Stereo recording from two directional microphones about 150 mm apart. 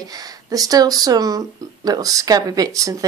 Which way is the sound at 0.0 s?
25° right (ahead or behind).